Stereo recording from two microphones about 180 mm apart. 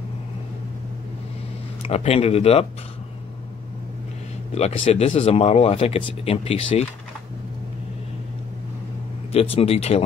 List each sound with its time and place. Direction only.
1.8 s speech: 35° left (ahead or behind)
4.6 s speech: 35° left (ahead or behind)
9.6 s speech: 35° left (ahead or behind)